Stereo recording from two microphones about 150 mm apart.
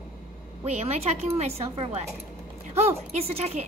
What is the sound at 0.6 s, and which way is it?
A woman's voice, 45° right (ahead or behind).